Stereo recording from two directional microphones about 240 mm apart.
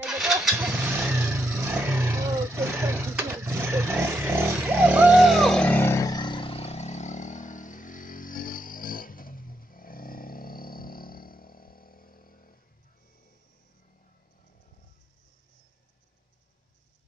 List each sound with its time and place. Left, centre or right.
0.0 s vehicle: centre; by 12.5 s left